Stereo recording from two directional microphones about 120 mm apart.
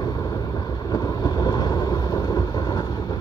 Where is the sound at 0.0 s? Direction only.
35° left (ahead or behind).